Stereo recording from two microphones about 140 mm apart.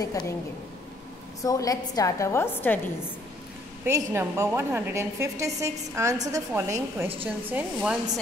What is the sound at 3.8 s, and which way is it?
A woman's voice, 20° right (ahead or behind).